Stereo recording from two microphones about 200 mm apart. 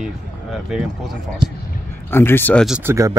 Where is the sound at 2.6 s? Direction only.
5° right (ahead or behind).